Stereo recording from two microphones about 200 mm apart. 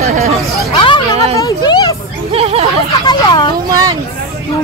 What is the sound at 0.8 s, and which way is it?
Music, 25° left (ahead or behind).